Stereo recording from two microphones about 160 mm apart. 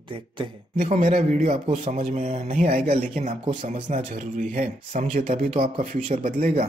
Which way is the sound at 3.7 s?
45° right (ahead or behind).